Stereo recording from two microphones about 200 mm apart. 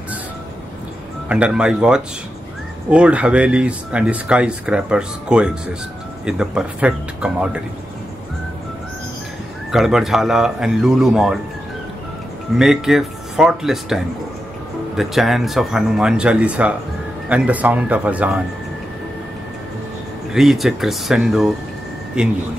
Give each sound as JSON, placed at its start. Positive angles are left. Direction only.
{"t": 1.3, "sound": "speech", "side_deg": -5}
{"t": 9.7, "sound": "speech", "side_deg": 0}
{"t": 12.5, "sound": "speech", "side_deg": 0}
{"t": 20.3, "sound": "speech", "side_deg": 0}